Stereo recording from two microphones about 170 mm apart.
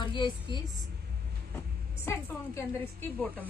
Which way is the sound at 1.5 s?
15° left (ahead or behind).